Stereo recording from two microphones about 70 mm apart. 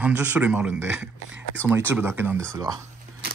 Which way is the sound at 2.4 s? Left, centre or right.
Right.